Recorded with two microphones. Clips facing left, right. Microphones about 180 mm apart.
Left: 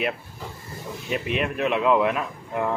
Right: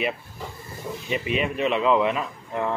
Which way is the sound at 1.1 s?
Centre (ahead or behind).